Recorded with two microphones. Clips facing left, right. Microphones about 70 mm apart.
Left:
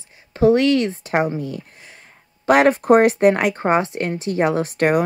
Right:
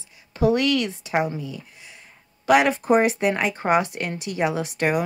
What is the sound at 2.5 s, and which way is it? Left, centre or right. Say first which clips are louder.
Speech: left 4 dB; left.